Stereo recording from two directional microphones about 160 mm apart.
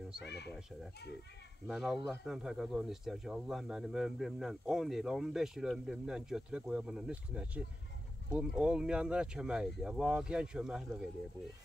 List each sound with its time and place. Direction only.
0.2 s speech: 90° left
1.7 s speech: centre (ahead or behind)